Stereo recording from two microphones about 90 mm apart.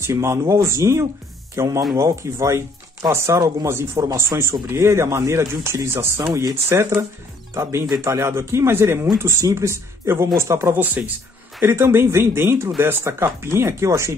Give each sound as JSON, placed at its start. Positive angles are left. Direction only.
{"t": 0.0, "sound": "speech", "side_deg": -30}
{"t": 3.3, "sound": "speech", "side_deg": -50}
{"t": 3.6, "sound": "speech", "side_deg": -30}